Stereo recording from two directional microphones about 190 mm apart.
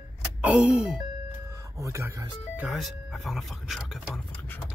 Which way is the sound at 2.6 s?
Centre (ahead or behind).